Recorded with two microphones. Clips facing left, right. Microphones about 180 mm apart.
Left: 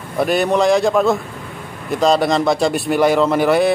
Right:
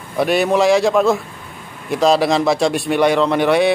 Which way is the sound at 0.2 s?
Centre (ahead or behind).